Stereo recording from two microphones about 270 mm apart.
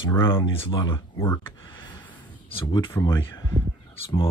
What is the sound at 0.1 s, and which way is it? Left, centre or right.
Speech, centre.